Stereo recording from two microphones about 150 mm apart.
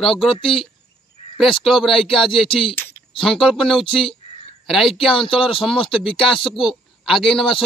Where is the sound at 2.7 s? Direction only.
15° left (ahead or behind).